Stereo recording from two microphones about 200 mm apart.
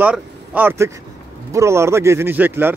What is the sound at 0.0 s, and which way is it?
A man's voice, 10° right (ahead or behind).